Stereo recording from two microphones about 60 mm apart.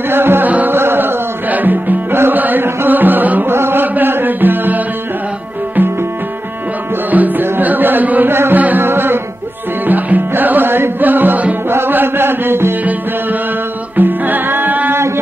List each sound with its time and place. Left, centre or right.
0.1 s music: right
0.5 s carnatic music: right
0.7 s music: right
7.1 s music: right
8.3 s music: right
13.9 s music: right